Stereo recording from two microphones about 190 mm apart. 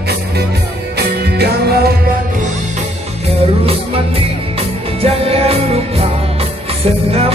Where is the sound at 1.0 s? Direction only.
60° right (ahead or behind).